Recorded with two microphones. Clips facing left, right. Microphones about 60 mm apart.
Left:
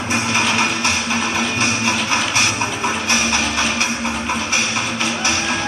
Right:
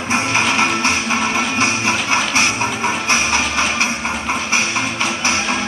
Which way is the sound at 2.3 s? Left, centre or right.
Right.